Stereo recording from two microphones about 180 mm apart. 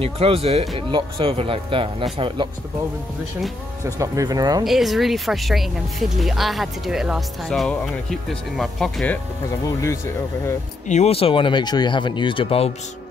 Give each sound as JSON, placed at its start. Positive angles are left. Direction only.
{"t": 0.0, "sound": "speech", "side_deg": -30}
{"t": 3.8, "sound": "speech", "side_deg": -15}
{"t": 4.6, "sound": "speech", "side_deg": 0}
{"t": 10.9, "sound": "speech", "side_deg": 35}